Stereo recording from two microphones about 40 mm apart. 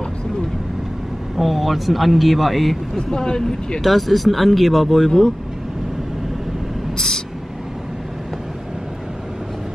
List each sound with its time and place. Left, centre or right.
1.3 s speech: centre
3.0 s speech: centre
3.8 s speech: centre